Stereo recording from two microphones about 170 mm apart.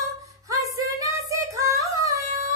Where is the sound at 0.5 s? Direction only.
20° right (ahead or behind).